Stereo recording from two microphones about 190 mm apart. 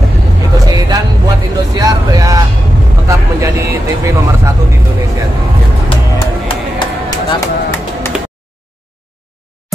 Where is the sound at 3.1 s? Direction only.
15° right (ahead or behind).